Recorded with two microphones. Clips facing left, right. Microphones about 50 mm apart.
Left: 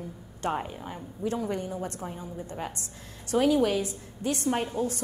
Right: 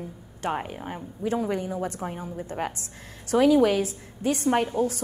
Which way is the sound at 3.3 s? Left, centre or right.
Right.